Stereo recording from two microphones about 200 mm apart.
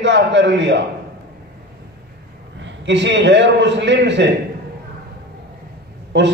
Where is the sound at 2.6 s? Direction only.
65° right (ahead or behind).